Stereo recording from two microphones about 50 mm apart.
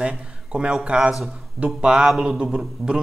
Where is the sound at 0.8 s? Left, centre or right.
Right.